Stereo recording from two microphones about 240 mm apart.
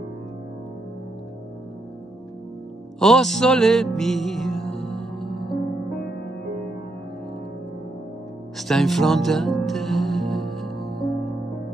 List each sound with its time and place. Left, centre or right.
3.0 s music: centre
5.3 s music: centre
8.5 s music: centre